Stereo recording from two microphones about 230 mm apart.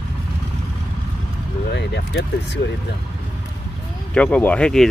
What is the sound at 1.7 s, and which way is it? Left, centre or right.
Vehicle, left.